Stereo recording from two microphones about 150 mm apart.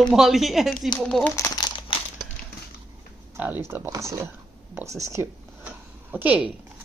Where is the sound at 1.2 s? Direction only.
15° left (ahead or behind).